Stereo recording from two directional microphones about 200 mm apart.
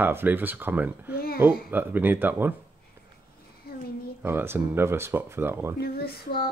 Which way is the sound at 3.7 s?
50° left (ahead or behind).